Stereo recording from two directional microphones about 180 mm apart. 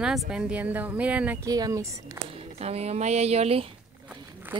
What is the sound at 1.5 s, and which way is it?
Speech, 20° right (ahead or behind).